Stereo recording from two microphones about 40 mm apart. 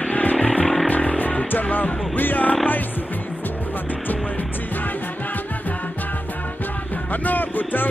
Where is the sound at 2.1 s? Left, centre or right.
Left.